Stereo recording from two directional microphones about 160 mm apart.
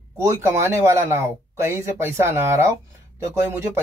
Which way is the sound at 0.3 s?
15° right (ahead or behind).